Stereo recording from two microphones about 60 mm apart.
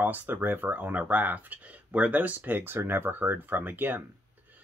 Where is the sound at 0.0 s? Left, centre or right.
Right.